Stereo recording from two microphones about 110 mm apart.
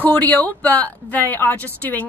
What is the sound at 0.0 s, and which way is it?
Speech, 15° left (ahead or behind).